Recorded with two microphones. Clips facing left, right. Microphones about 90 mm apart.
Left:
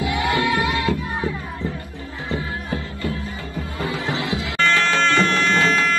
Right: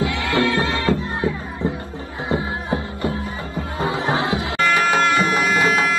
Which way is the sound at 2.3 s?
25° right (ahead or behind).